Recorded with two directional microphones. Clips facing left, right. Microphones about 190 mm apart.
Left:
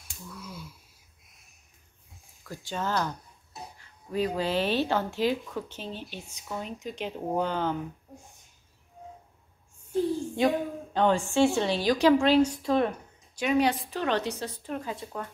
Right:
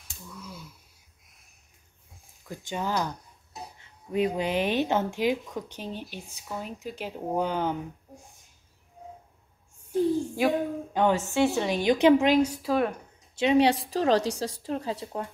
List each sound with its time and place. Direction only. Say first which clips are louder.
0.0 s a sound: left 1 dB; 10° left (ahead or behind)
2.4 s speech: right 1 dB; 20° right (ahead or behind)
10.3 s a woman's voice: even; 10° right (ahead or behind)
11.7 s a woman's voice: right 2 dB; 20° right (ahead or behind)
12.4 s speech: even; 5° right (ahead or behind)
13.4 s a woman's voice: right 3 dB; 25° right (ahead or behind)